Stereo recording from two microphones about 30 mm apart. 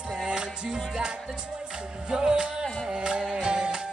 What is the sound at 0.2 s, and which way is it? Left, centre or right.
Music, right.